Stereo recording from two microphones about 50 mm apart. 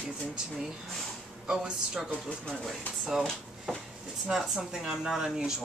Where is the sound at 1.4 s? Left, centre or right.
Centre.